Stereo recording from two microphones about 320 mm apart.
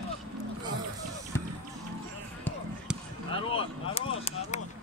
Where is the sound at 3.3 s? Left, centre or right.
Centre.